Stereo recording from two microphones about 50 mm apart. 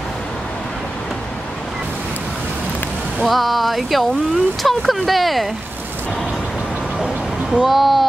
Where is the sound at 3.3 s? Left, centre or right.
Centre.